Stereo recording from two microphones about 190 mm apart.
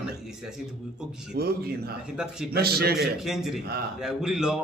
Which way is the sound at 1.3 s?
55° right (ahead or behind).